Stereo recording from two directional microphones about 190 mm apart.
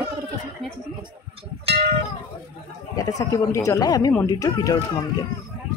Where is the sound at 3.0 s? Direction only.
20° left (ahead or behind).